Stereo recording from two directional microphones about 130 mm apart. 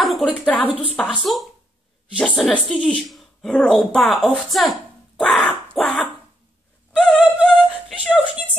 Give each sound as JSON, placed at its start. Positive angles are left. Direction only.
{"t": 0.0, "sound": "a sound", "side_deg": 0}
{"t": 0.3, "sound": "a woman's voice", "side_deg": 10}
{"t": 7.0, "sound": "opera", "side_deg": 5}
{"t": 7.5, "sound": "female singing", "side_deg": -5}